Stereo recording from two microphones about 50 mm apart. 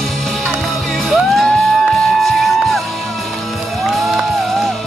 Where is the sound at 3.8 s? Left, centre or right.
Centre.